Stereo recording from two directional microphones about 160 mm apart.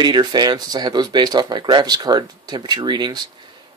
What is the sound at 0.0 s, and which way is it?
Speech, 25° right (ahead or behind).